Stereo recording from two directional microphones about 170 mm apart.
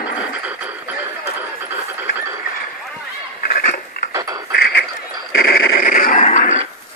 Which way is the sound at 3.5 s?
55° left (ahead or behind).